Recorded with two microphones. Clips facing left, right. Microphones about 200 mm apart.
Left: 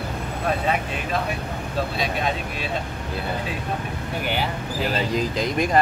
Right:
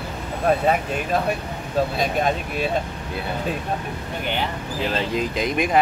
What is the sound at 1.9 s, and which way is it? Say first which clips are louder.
Speech: right 3 dB; 45° right (ahead or behind).